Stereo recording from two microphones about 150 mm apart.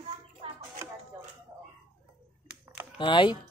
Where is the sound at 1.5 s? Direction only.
15° right (ahead or behind).